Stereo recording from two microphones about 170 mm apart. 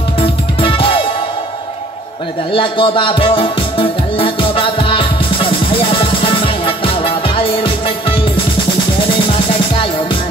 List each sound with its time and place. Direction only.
0.2 s music: 35° left (ahead or behind)
2.5 s music: 30° left (ahead or behind)